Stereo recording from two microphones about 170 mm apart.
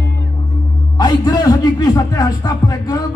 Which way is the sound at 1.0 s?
20° left (ahead or behind).